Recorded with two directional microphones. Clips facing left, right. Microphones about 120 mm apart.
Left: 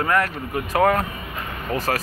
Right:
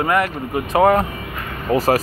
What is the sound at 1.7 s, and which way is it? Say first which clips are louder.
Speech: right 8 dB; 20° right (ahead or behind).